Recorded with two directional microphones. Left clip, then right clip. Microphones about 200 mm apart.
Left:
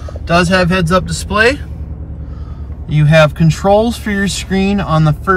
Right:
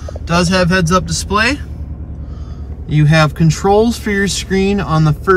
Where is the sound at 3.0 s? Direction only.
Centre (ahead or behind).